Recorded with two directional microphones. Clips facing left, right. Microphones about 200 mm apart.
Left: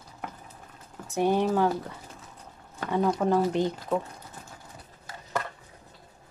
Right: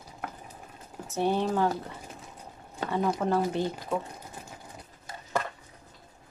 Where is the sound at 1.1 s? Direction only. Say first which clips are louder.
Left 3 dB; 15° left (ahead or behind).